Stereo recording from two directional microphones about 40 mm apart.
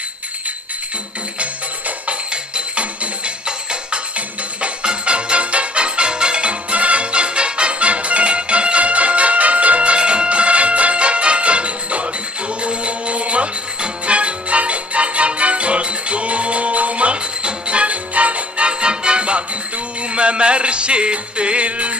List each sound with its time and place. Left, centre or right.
1.4 s music: right